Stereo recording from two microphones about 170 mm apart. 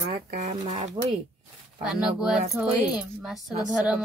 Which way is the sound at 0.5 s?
40° right (ahead or behind).